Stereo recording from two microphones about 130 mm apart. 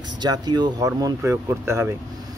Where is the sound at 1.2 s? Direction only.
20° right (ahead or behind).